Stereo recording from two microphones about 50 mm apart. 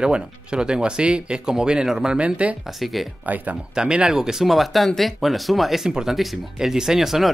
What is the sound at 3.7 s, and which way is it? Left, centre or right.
Speech, centre.